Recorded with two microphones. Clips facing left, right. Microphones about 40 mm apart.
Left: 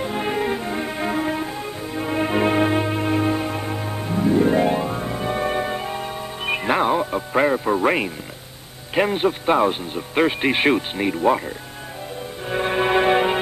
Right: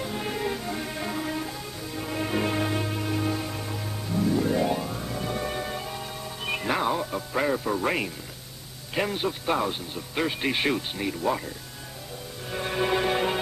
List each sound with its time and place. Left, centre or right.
0.0 s music: left
8.9 s speech: left
12.4 s music: left